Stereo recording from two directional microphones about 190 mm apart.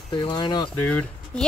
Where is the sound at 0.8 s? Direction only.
10° left (ahead or behind).